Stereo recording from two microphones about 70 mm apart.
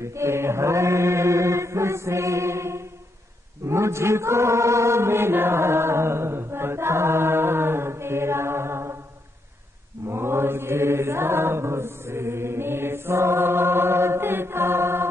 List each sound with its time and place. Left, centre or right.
0.0 s chant: right
10.0 s chant: right